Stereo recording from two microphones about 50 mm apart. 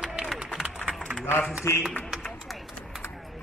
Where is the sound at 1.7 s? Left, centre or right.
Left.